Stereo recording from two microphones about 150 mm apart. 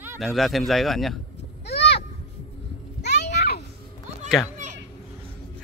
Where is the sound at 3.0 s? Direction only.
90° left.